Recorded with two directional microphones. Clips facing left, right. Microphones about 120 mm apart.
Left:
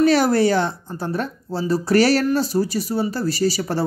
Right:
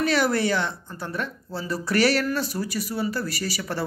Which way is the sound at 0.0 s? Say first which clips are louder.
Left 7 dB; 35° left (ahead or behind).